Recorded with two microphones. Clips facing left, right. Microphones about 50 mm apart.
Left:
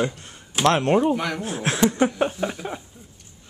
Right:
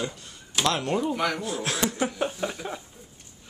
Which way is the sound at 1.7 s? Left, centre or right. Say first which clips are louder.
Left 7 dB; left.